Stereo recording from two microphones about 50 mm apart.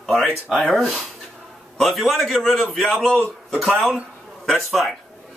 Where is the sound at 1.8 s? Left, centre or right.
Centre.